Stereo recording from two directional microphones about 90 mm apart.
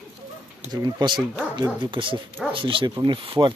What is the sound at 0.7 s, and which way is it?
Speech, 55° right (ahead or behind).